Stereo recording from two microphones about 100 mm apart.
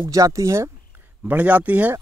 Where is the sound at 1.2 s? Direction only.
15° right (ahead or behind).